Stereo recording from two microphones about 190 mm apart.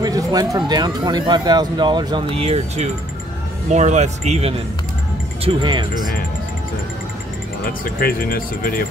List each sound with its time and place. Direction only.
0.0 s speech: 20° right (ahead or behind)
5.4 s speech: 25° right (ahead or behind)
7.8 s speech: 50° left (ahead or behind)